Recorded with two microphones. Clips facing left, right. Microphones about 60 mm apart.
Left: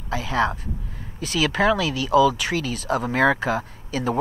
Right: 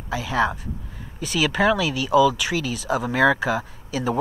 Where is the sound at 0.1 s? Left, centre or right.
Left.